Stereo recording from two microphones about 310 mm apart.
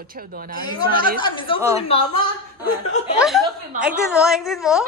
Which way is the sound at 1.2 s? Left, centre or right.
Centre.